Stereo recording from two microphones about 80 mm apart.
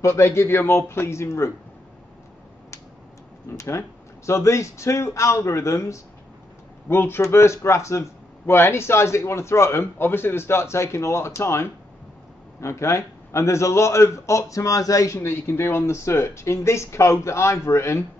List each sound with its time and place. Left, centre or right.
0.0 s a man's voice: left
3.5 s a man's voice: left
6.9 s a man's voice: left